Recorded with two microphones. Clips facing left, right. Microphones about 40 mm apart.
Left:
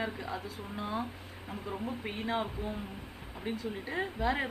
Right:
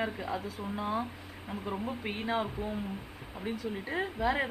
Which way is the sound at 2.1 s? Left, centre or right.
Right.